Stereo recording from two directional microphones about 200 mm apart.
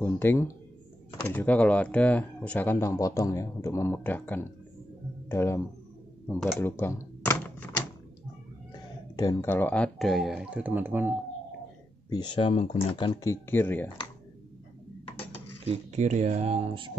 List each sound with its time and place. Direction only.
0.0 s speech: 10° left (ahead or behind)
6.6 s computer keyboard: 10° left (ahead or behind)
9.1 s speech: 15° left (ahead or behind); by 11.1 s 10° right (ahead or behind)
12.1 s speech: 20° left (ahead or behind)
15.7 s speech: 35° right (ahead or behind)